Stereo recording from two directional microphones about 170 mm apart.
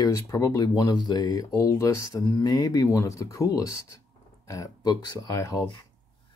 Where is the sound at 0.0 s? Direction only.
20° left (ahead or behind).